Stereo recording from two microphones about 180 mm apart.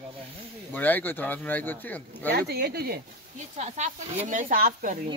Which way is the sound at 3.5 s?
40° right (ahead or behind).